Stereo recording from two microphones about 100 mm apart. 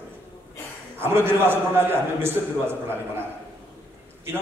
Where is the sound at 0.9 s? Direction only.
25° right (ahead or behind).